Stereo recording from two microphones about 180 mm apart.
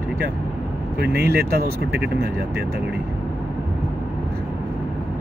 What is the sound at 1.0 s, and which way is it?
Speech, 60° right (ahead or behind).